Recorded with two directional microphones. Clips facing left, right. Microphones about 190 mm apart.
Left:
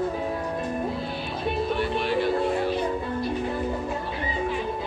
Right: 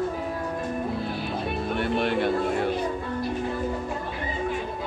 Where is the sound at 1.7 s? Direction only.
55° right (ahead or behind).